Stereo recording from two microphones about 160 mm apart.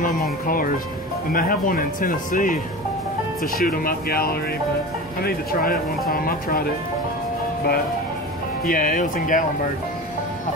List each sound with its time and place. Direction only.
1.3 s speech: 65° left (ahead or behind)
3.6 s speech: 65° left (ahead or behind)
8.6 s speech: 60° left (ahead or behind)